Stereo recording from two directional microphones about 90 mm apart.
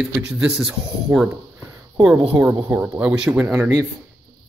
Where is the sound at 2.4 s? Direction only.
15° right (ahead or behind).